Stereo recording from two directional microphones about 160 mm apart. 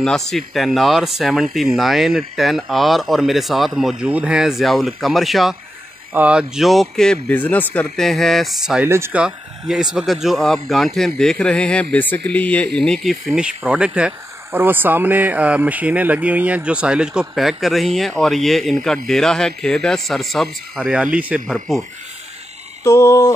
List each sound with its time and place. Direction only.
0.0 s speech: 5° left (ahead or behind)
8.8 s speech: 15° right (ahead or behind)
9.2 s speech: 5° right (ahead or behind)
22.8 s a sound: 20° left (ahead or behind)